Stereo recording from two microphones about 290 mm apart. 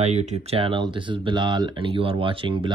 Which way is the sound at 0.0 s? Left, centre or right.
Right.